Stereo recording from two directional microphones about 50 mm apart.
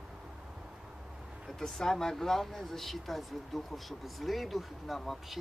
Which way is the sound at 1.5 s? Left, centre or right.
Centre.